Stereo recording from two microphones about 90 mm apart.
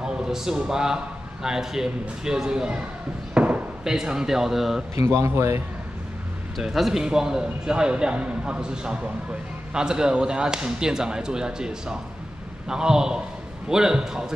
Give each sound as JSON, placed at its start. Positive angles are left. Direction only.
{"t": 0.0, "sound": "a man's voice", "side_deg": -5}
{"t": 5.0, "sound": "speech", "side_deg": -30}
{"t": 6.6, "sound": "a man's voice", "side_deg": -5}